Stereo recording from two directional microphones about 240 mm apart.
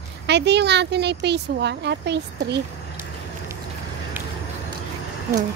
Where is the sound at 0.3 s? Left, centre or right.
Right.